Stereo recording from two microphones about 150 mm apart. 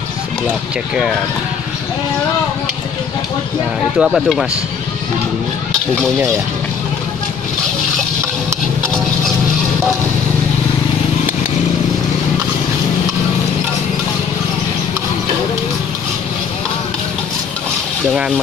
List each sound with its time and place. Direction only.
4.0 s speech: centre (ahead or behind)